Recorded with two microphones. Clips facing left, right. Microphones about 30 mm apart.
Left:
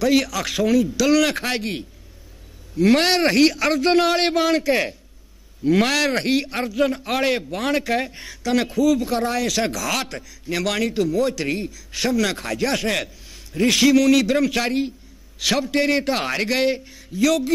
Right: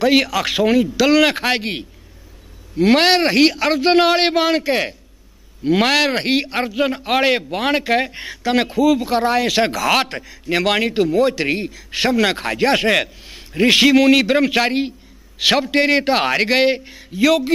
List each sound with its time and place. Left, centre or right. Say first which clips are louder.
0.0 s a man's voice: right 4 dB; right